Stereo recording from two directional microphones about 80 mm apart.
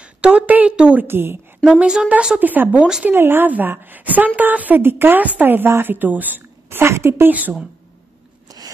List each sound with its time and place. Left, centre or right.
0.0 s a woman's voice: centre
1.0 s a woman's voice: right
1.6 s a woman's voice: centre; by 7.3 s right
8.5 s a sound: right